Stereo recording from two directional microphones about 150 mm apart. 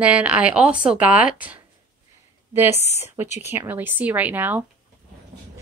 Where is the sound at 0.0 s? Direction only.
10° right (ahead or behind).